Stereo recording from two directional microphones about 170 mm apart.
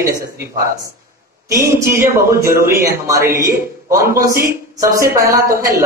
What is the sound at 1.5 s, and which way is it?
Speech, 15° right (ahead or behind).